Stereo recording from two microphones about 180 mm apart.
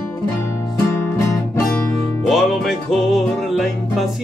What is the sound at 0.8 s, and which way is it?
Music, 15° left (ahead or behind).